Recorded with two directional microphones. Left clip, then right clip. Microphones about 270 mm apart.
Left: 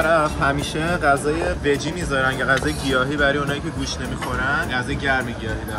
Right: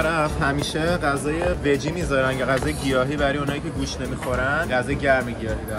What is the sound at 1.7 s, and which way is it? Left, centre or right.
Speech, right.